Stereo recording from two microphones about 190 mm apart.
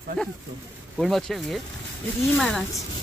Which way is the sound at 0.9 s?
Centre (ahead or behind).